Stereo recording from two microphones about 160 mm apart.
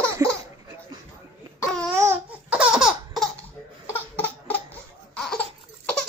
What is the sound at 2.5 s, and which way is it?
Laughter, 5° right (ahead or behind).